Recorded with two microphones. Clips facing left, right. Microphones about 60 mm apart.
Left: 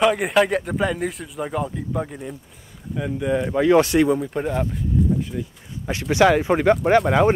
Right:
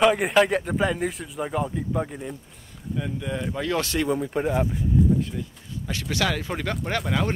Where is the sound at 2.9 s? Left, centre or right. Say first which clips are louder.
Left 7 dB; centre.